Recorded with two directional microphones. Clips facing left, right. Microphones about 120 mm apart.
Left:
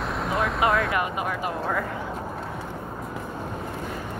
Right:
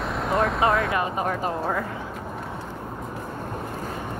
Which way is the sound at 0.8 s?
25° right (ahead or behind).